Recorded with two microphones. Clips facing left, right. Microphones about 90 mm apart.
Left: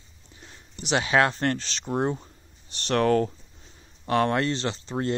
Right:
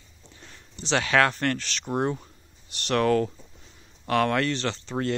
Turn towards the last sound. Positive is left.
turn(degrees=20)  # may be behind; listen again after turning